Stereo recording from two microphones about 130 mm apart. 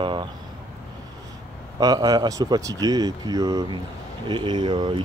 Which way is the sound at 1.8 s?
30° right (ahead or behind).